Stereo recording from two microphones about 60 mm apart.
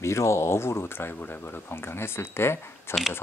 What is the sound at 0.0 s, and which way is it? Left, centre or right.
Speech, left.